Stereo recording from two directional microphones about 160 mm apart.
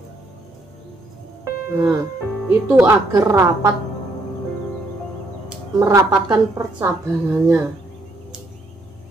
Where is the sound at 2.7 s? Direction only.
20° right (ahead or behind).